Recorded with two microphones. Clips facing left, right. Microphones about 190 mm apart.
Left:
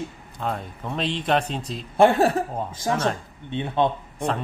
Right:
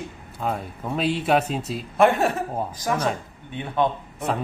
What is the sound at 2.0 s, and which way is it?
Speech, 35° left (ahead or behind).